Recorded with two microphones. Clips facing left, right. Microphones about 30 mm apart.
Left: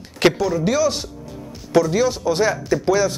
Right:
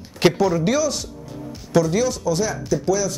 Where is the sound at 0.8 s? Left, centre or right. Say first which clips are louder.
Left 3 dB; left.